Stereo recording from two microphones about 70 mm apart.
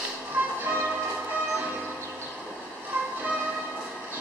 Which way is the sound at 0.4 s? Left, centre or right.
Right.